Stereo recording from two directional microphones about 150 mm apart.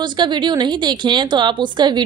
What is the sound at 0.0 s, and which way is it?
A woman's voice, 30° right (ahead or behind).